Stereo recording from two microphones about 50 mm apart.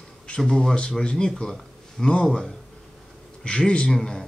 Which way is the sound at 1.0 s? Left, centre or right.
Centre.